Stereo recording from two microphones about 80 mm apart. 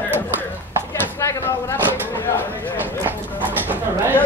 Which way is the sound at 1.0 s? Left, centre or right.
Left.